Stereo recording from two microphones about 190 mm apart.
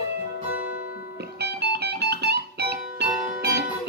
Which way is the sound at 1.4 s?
60° right (ahead or behind).